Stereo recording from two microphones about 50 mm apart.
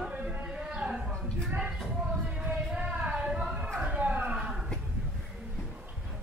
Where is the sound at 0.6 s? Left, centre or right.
Centre.